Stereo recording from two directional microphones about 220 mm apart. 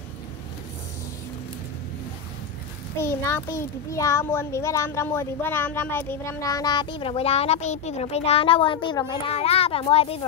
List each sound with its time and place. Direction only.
3.0 s a child's voice: 10° left (ahead or behind)